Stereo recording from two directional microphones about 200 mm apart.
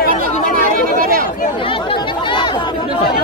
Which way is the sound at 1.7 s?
25° left (ahead or behind).